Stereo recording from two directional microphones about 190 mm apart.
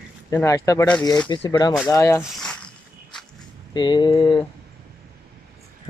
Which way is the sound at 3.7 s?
25° left (ahead or behind).